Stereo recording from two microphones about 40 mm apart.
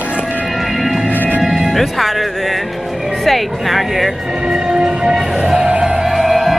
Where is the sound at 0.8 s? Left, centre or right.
Centre.